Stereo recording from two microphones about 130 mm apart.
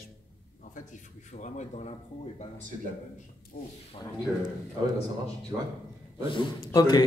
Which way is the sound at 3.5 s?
90° left.